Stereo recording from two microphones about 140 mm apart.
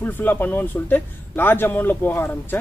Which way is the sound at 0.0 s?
15° left (ahead or behind).